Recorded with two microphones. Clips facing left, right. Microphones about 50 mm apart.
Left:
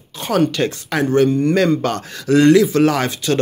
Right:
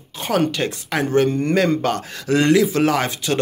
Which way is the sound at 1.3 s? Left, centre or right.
Right.